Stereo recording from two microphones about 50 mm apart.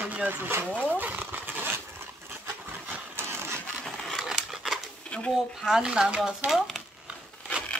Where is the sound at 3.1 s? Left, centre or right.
Right.